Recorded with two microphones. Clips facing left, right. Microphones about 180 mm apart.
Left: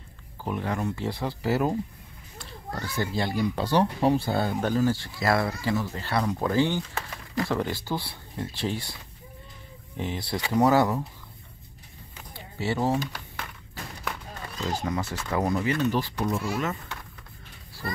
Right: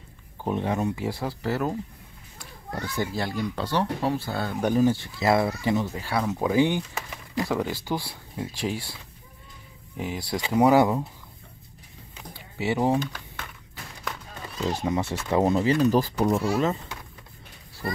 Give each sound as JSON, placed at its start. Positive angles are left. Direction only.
{"t": 0.4, "sound": "speech", "side_deg": -20}
{"t": 0.9, "sound": "speech", "side_deg": -10}
{"t": 1.4, "sound": "speech", "side_deg": 10}
{"t": 2.7, "sound": "speech", "side_deg": -15}
{"t": 3.2, "sound": "speech", "side_deg": 0}
{"t": 3.5, "sound": "speech", "side_deg": 15}
{"t": 4.6, "sound": "speech", "side_deg": -15}
{"t": 9.9, "sound": "speech", "side_deg": -10}
{"t": 12.4, "sound": "speech", "side_deg": -15}
{"t": 14.7, "sound": "speech", "side_deg": -25}